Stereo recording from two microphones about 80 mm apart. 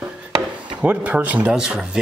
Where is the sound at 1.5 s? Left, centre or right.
Centre.